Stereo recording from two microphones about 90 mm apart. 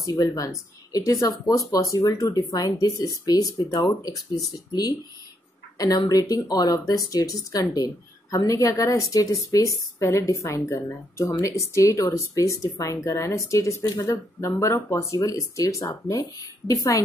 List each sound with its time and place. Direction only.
0.0 s speech: 40° left (ahead or behind)
5.8 s speech: 45° left (ahead or behind)